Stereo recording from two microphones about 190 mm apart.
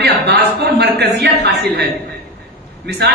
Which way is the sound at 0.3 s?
60° right (ahead or behind).